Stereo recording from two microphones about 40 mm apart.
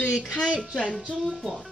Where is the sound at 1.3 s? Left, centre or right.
Centre.